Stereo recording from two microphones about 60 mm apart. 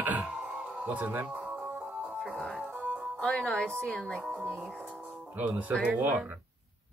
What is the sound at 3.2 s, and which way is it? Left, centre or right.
A woman's voice, centre.